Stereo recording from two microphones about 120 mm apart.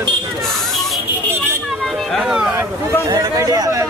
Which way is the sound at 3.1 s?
30° right (ahead or behind).